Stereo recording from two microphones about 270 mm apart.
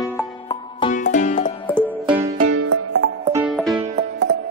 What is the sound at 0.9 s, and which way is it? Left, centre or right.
Music, left.